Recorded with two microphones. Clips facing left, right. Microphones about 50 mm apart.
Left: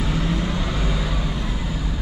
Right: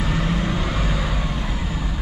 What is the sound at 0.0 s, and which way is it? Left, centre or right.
Vehicle, centre.